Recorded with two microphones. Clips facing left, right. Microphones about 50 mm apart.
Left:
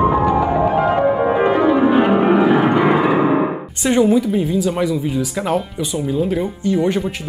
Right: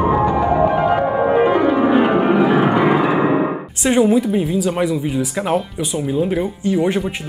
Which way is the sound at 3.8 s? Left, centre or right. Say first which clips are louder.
Even; centre.